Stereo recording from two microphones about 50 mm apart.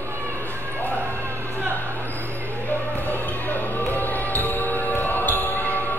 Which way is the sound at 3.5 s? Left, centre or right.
Left.